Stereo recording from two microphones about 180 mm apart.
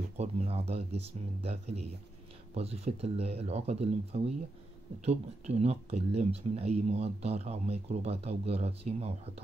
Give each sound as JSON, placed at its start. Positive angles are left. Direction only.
{"t": 0.2, "sound": "speech", "side_deg": -35}